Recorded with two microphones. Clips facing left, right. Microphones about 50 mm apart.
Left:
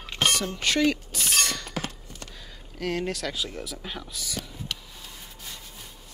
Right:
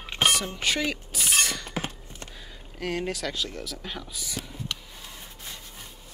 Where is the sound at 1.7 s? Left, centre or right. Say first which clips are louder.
Even; right.